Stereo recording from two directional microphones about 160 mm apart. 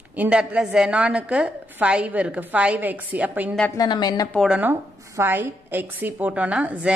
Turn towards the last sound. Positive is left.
turn(degrees=-5)  # may be behind; listen again after turning